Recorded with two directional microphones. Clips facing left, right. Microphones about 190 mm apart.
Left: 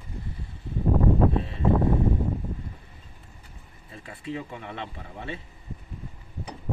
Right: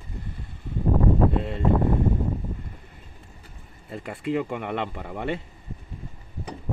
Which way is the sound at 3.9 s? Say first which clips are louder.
Right 8 dB; 75° right (ahead or behind).